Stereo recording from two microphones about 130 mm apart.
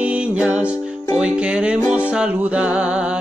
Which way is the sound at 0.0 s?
10° right (ahead or behind).